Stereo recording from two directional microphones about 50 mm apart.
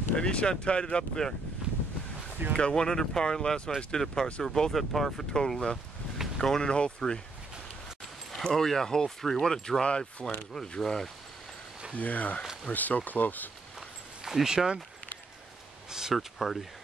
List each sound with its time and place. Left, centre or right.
0.1 s speech: left
1.6 s wind noise: centre
2.5 s speech: centre
8.5 s speech: centre
12.0 s speech: left
13.7 s a sound: centre
15.9 s speech: centre